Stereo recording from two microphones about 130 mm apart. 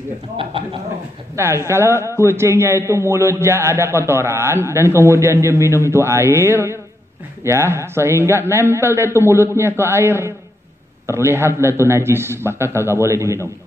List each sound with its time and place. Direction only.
0.4 s speech: 45° right (ahead or behind)
1.3 s a man's voice: 20° right (ahead or behind)